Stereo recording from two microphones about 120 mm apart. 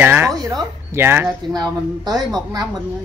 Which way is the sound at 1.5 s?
35° right (ahead or behind).